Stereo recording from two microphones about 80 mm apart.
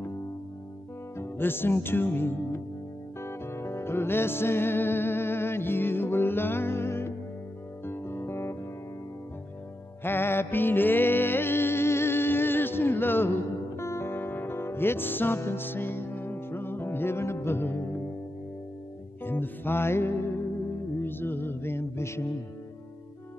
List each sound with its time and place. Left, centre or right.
1.1 s music: left
10.0 s music: left
19.2 s music: left